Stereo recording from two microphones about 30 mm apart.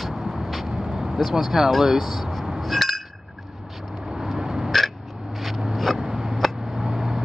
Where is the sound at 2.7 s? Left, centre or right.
Centre.